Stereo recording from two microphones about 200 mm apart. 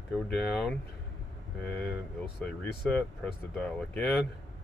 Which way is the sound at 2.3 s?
Centre (ahead or behind).